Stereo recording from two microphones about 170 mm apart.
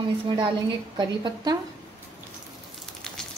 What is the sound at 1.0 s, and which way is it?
Speech, 25° right (ahead or behind).